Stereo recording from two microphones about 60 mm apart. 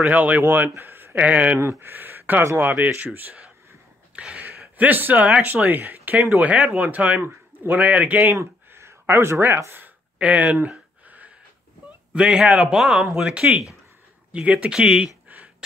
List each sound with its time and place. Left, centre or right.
0.1 s a man's voice: right
1.6 s a man's voice: right
4.1 s a sound: right
4.7 s a man's voice: right
8.4 s a sound: right
10.1 s a man's voice: right
11.1 s wheeze: right
12.1 s a man's voice: centre
15.2 s a sound: right